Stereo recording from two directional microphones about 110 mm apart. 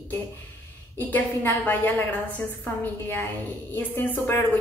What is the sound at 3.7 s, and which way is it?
Speech, 20° left (ahead or behind).